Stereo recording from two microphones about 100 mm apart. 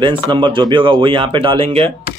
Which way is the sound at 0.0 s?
50° right (ahead or behind).